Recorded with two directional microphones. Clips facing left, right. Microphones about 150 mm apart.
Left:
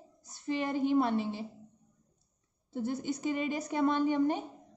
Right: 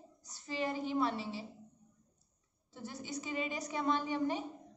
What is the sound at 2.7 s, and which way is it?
A woman's voice, 55° left (ahead or behind).